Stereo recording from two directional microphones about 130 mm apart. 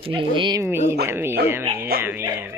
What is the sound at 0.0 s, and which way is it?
Speech, 40° right (ahead or behind).